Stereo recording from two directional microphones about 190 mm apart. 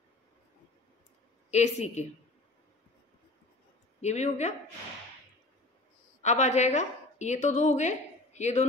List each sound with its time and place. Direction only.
1.5 s a woman's voice: 35° left (ahead or behind)
4.0 s a woman's voice: 35° left (ahead or behind)
6.2 s a woman's voice: 35° left (ahead or behind)